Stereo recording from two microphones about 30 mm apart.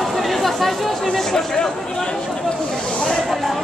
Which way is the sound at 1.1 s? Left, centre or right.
Centre.